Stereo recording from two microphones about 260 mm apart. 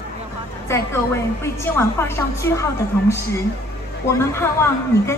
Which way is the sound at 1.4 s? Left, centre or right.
Centre.